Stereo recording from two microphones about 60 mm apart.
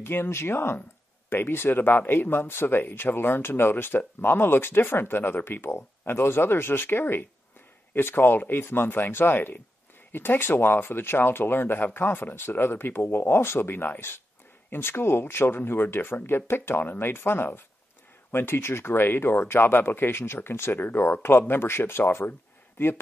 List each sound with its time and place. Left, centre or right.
0.0 s speech: left